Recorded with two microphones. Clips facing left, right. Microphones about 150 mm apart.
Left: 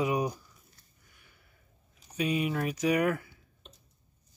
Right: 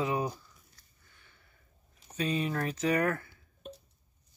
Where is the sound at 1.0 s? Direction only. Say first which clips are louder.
Even; 10° left (ahead or behind).